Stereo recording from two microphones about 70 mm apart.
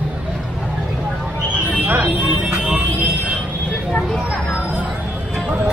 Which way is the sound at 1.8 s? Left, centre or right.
Right.